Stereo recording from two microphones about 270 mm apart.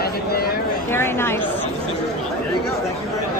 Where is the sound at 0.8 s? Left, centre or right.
Centre.